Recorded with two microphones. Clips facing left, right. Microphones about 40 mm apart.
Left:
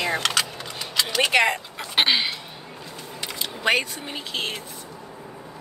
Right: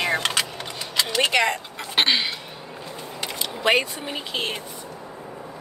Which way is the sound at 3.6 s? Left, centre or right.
Centre.